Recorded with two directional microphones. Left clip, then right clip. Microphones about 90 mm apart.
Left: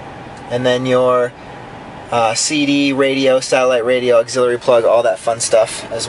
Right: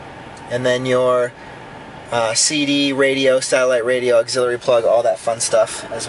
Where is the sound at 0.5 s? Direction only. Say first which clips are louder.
Left 3 dB; 15° right (ahead or behind).